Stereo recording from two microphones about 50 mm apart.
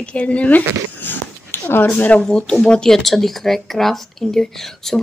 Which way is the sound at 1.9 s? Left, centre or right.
Left.